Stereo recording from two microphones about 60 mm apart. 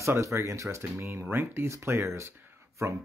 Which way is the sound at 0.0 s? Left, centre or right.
Right.